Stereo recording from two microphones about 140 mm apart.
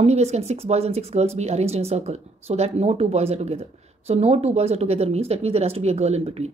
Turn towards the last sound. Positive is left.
turn(degrees=-50)  # may be behind; listen again after turning